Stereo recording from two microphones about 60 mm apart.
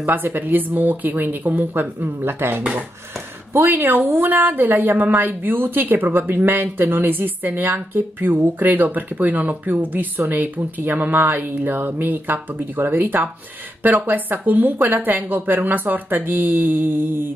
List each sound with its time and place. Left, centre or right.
0.0 s speech: right